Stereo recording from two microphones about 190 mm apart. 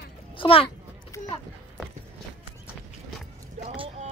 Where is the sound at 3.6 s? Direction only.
30° right (ahead or behind).